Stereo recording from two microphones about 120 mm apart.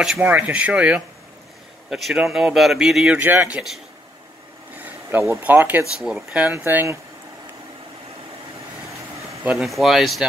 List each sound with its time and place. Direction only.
0.0 s speech: 10° right (ahead or behind)
3.2 s speech: 15° right (ahead or behind)
5.4 s speech: 15° right (ahead or behind)
9.4 s speech: 10° right (ahead or behind)
9.7 s speech: centre (ahead or behind)